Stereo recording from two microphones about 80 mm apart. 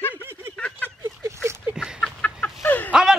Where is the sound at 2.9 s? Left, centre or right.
Centre.